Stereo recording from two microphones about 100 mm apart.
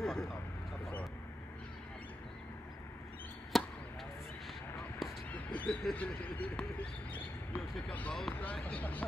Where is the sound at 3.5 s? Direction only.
Centre (ahead or behind).